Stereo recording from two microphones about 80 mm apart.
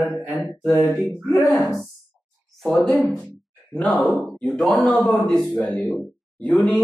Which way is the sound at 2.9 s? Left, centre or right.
Centre.